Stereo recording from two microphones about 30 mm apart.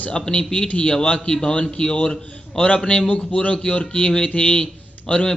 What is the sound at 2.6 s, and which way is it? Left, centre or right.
A man's voice, left.